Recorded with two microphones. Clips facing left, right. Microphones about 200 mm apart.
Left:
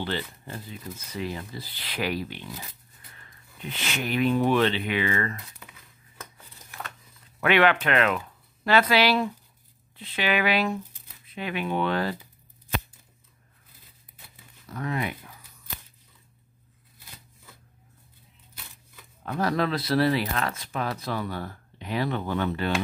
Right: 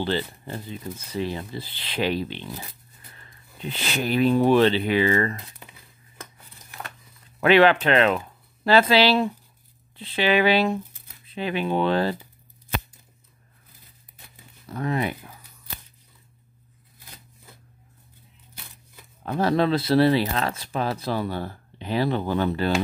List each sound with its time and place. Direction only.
0.0 s speech: 30° right (ahead or behind)
7.3 s speech: 30° right (ahead or behind)
14.7 s speech: 30° right (ahead or behind)
19.2 s speech: 30° right (ahead or behind)